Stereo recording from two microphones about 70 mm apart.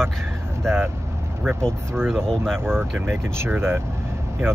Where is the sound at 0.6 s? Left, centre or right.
Right.